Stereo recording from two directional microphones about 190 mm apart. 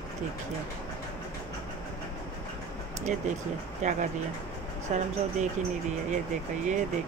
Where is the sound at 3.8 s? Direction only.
40° right (ahead or behind).